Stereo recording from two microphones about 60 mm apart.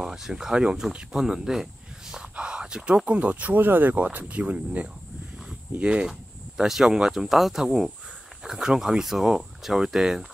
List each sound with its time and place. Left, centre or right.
0.0 s speech: centre
2.3 s a sound: centre
3.1 s speech: right
6.5 s speech: centre